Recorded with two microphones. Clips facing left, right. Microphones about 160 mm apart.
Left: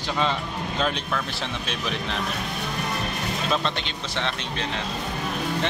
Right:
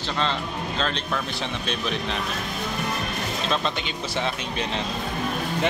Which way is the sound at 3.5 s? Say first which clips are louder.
Even; 5° right (ahead or behind).